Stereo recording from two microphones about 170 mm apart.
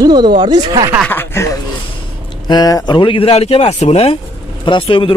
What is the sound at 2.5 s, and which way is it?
A man's voice, 20° left (ahead or behind).